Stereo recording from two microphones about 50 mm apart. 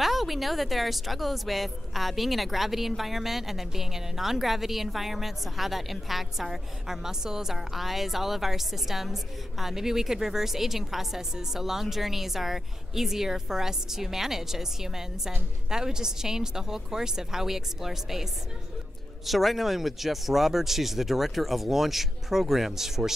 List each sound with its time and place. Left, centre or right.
0.0 s a woman's voice: centre